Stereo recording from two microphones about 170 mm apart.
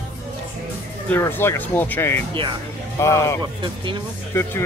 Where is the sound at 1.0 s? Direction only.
10° left (ahead or behind).